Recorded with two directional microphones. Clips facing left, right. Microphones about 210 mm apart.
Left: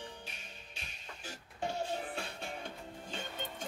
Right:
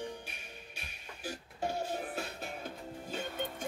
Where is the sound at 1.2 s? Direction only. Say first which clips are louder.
Right 3 dB; 5° right (ahead or behind).